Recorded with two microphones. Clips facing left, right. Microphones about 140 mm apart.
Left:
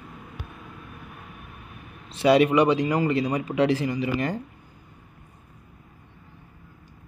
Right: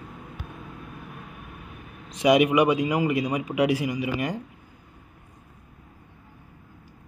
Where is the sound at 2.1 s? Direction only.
15° right (ahead or behind).